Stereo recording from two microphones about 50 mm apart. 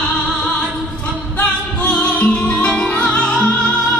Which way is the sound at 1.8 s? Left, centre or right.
Left.